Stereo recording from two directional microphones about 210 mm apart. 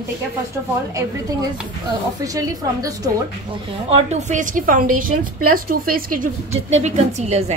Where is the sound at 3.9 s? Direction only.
35° right (ahead or behind).